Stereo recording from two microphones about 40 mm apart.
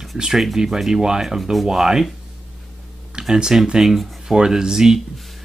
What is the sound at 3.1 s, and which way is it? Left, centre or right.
Speech, centre.